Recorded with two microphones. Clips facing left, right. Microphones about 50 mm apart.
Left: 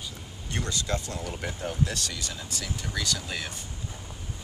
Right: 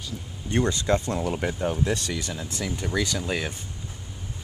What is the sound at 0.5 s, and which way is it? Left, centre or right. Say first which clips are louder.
Speech: right 8 dB; right.